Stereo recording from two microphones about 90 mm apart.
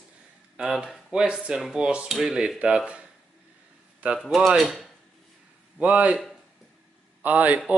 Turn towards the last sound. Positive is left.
turn(degrees=-20)  # may be behind; listen again after turning